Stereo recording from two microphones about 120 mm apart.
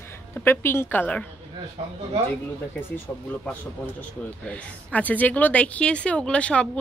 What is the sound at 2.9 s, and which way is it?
Speech, 15° left (ahead or behind).